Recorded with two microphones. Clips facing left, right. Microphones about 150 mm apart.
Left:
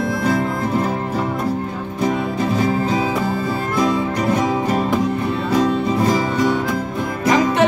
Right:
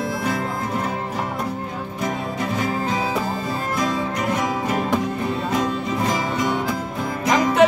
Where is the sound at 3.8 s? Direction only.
30° left (ahead or behind).